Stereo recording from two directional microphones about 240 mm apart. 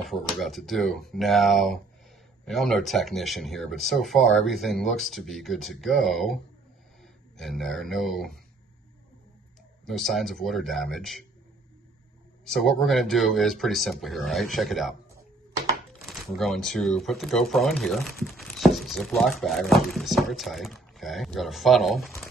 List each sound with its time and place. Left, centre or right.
0.1 s speech: centre
9.8 s speech: centre
12.4 s speech: centre
16.0 s speech: centre